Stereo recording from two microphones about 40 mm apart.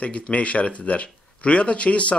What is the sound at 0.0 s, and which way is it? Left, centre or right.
Speech, left.